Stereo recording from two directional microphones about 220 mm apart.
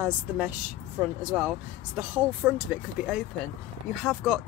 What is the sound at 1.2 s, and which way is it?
Speech, 5° right (ahead or behind).